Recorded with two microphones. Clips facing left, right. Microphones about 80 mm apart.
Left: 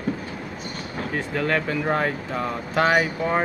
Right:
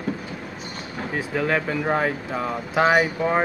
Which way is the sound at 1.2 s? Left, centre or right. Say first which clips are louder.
Right 1 dB; centre.